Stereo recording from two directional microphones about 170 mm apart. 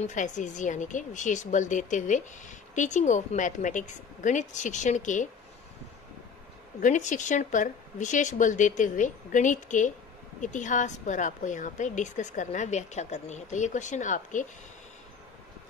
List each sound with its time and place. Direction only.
0.0 s a woman's voice: 45° left (ahead or behind)
6.8 s a woman's voice: 45° left (ahead or behind)